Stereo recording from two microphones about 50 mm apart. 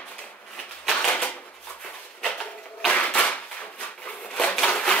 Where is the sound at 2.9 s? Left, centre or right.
Left.